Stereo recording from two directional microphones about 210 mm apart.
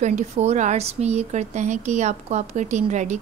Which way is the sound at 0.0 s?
35° right (ahead or behind).